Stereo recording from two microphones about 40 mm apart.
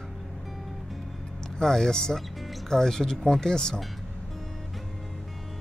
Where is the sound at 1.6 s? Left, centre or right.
Centre.